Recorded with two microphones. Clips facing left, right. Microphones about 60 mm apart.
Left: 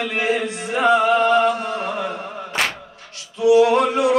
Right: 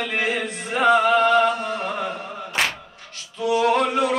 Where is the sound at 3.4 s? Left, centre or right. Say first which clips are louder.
Left 5 dB; centre.